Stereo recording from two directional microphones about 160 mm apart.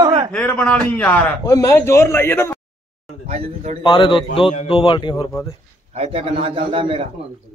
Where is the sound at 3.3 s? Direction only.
45° right (ahead or behind).